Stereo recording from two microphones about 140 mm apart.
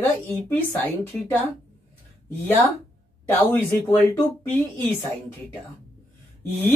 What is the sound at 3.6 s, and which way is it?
Speech, 15° left (ahead or behind).